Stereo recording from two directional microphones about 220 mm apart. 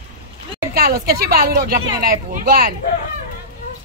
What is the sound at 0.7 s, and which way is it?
Speech, 45° right (ahead or behind).